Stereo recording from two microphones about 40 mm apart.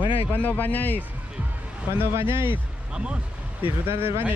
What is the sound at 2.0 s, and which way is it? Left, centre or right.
Speech, right.